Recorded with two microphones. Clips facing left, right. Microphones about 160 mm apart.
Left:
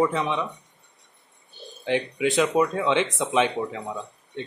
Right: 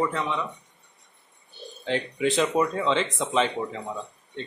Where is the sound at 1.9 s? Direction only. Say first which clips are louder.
Left 2 dB; 5° left (ahead or behind).